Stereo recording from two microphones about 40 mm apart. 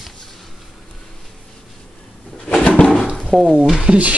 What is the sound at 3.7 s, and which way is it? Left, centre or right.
Speech, centre.